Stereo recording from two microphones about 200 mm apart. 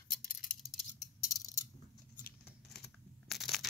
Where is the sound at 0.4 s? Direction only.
Centre (ahead or behind).